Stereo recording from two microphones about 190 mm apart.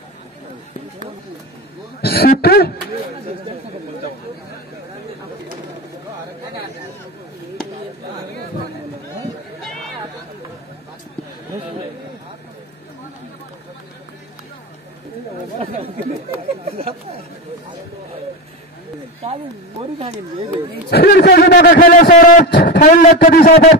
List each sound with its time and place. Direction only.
2.0 s a man's voice: 55° left (ahead or behind)
20.9 s a man's voice: 55° left (ahead or behind)